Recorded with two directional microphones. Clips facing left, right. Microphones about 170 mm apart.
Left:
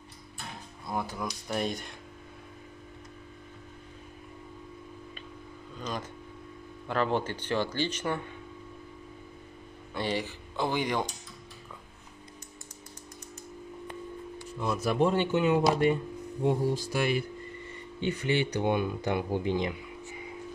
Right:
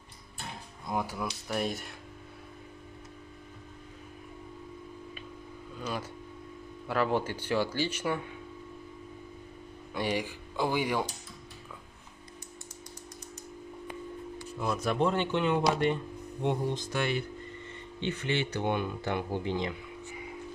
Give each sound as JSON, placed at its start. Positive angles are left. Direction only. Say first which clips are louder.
{"t": 0.8, "sound": "speech", "louder": "right 1 dB", "side_deg": -10}
{"t": 5.8, "sound": "a sound", "louder": "even", "side_deg": -10}
{"t": 6.9, "sound": "speech", "louder": "even", "side_deg": -10}
{"t": 9.9, "sound": "speech", "louder": "even", "side_deg": -10}
{"t": 14.6, "sound": "speech", "louder": "left 2 dB", "side_deg": 0}